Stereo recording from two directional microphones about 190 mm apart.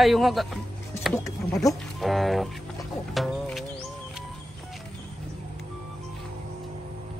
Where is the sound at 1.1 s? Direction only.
15° left (ahead or behind).